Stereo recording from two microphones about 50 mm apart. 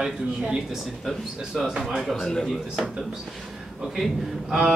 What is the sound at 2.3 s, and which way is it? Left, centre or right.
Speech, centre.